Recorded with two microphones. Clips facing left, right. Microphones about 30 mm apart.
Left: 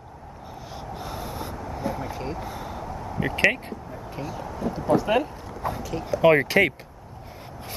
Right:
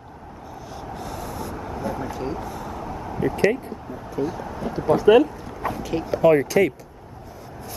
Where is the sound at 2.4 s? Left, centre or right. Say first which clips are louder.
Right 2 dB; left.